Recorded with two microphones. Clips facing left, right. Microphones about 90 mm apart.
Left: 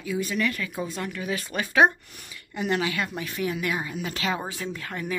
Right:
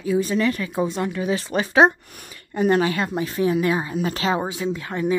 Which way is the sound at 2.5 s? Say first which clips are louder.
Right 7 dB; 40° right (ahead or behind).